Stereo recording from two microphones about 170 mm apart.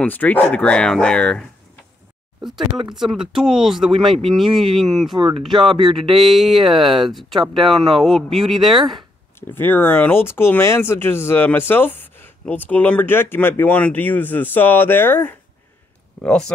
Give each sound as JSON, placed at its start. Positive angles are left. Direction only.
{"t": 0.0, "sound": "speech", "side_deg": 10}
{"t": 3.0, "sound": "speech", "side_deg": 0}
{"t": 5.1, "sound": "speech", "side_deg": -30}
{"t": 5.4, "sound": "speech", "side_deg": 0}
{"t": 5.7, "sound": "speech", "side_deg": -30}
{"t": 5.9, "sound": "speech", "side_deg": 0}
{"t": 9.4, "sound": "speech", "side_deg": 10}